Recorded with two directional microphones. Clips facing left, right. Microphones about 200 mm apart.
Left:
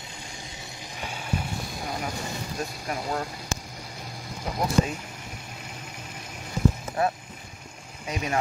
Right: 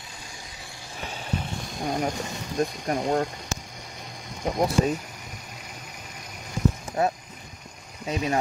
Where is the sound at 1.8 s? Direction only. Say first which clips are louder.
Right 7 dB; 40° right (ahead or behind).